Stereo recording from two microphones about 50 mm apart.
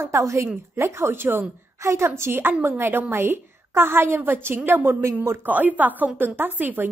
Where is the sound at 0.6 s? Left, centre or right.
Right.